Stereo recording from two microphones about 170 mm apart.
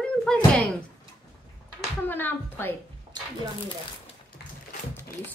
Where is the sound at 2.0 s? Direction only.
10° left (ahead or behind).